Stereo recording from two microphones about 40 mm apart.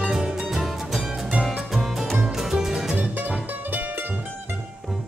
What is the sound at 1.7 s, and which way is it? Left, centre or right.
Music, centre.